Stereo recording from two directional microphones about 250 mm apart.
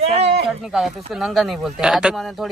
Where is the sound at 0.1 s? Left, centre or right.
Right.